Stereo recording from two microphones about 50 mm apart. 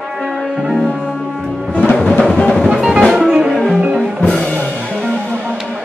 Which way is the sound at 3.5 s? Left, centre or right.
Centre.